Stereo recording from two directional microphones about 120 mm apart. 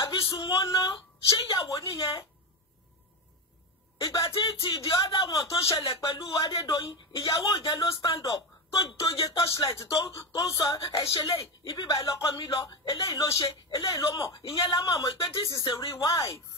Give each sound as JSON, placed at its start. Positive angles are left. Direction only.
{"t": 0.0, "sound": "a sound", "side_deg": 30}
{"t": 1.4, "sound": "speech", "side_deg": 30}
{"t": 4.0, "sound": "a woman's voice", "side_deg": 30}